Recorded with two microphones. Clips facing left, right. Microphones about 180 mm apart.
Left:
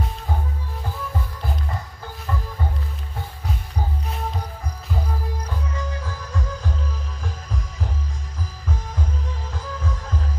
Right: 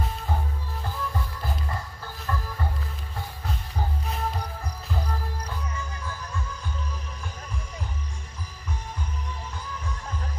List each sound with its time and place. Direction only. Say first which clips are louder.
2.2 s music: left 2 dB; 15° left (ahead or behind)
5.8 s music: left 5 dB; 90° left
9.5 s music: left 6 dB; 90° left